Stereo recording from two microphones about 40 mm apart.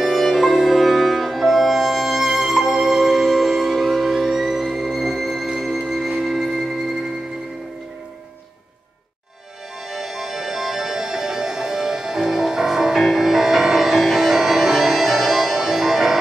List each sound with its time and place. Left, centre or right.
0.0 s music: centre
9.8 s music: centre